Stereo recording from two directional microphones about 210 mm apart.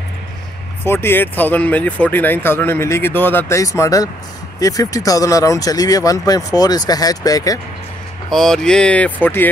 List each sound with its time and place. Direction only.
0.8 s speech: 10° left (ahead or behind)
8.3 s speech: centre (ahead or behind)